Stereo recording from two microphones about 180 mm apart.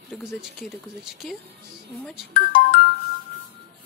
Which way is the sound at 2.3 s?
45° left (ahead or behind).